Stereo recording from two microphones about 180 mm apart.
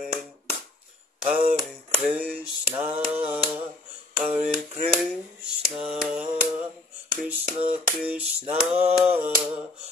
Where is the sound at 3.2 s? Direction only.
10° right (ahead or behind).